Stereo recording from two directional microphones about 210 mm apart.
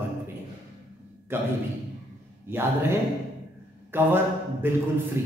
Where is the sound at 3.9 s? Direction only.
10° right (ahead or behind).